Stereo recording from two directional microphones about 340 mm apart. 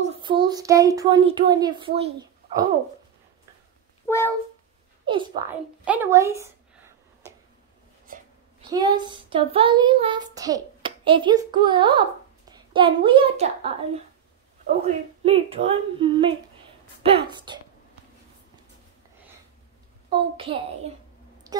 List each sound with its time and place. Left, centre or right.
0.0 s speech: centre
4.1 s cat: centre
5.0 s a woman's voice: centre
8.6 s child singing: centre
14.8 s a woman's voice: centre
20.1 s a woman's voice: centre
21.5 s a sound: centre